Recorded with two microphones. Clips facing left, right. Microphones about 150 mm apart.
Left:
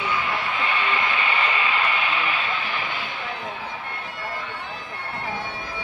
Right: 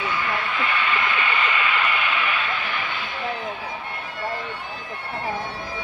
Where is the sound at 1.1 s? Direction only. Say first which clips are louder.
Even; 30° left (ahead or behind).